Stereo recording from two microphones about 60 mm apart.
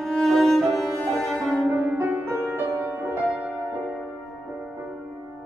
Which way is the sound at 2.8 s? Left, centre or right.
Right.